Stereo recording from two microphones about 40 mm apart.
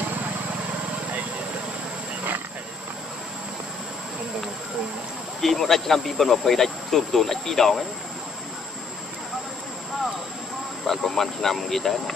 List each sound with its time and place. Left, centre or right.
5.4 s speech: centre
10.9 s speech: centre